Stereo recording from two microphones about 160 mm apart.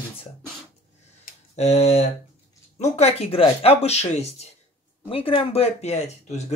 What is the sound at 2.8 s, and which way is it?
Speech, 40° left (ahead or behind).